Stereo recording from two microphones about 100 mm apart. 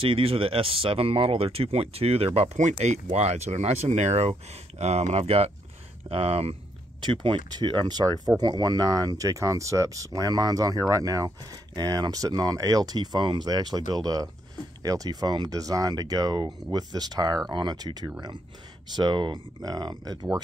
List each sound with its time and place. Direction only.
0.0 s speech: 65° right (ahead or behind); by 6.5 s 85° right
7.0 s speech: 55° right (ahead or behind)